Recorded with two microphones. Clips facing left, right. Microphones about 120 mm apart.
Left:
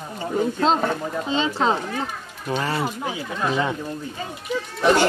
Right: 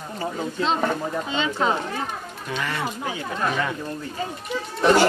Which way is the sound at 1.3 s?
30° left (ahead or behind).